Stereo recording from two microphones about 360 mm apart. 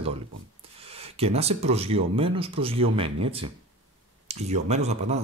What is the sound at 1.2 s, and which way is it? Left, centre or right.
Speech, centre.